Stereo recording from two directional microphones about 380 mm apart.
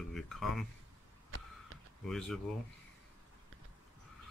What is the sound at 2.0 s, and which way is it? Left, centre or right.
Speech, centre.